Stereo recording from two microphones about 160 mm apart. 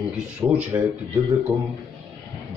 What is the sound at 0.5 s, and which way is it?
Speech, 10° right (ahead or behind).